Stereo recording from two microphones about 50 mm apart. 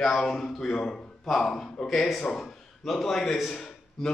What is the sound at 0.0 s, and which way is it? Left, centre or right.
Speech, centre.